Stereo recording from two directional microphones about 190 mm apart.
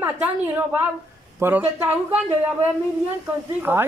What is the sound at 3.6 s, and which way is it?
Speech, 10° right (ahead or behind).